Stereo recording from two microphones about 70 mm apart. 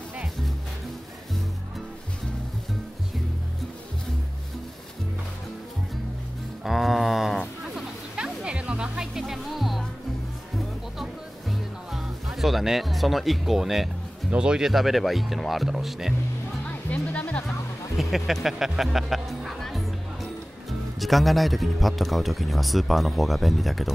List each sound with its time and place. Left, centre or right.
6.6 s a sound: centre
11.0 s music: centre
14.3 s a man's voice: centre
16.6 s music: centre
17.9 s a man's voice: centre